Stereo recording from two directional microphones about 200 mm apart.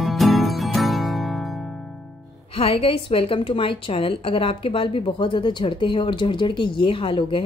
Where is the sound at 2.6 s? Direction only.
30° left (ahead or behind).